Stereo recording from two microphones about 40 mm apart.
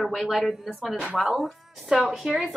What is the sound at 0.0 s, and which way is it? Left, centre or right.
A woman's voice, centre.